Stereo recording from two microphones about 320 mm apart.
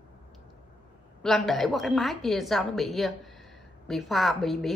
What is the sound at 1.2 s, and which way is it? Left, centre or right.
Speech, centre.